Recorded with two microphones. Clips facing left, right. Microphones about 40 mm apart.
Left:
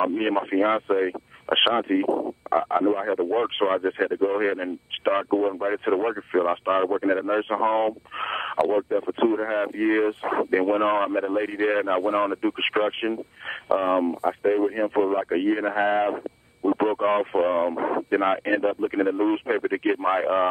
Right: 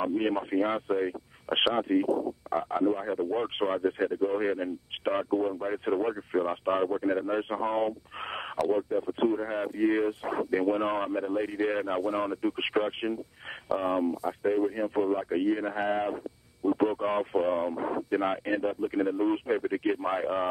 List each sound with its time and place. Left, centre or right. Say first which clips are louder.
0.0 s speech: left 5 dB; left